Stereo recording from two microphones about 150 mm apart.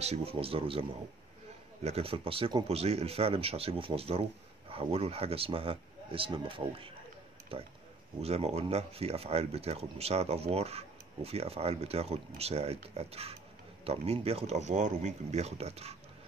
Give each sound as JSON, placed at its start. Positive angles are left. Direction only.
{"t": 0.0, "sound": "speech", "side_deg": -45}
{"t": 1.9, "sound": "speech", "side_deg": -40}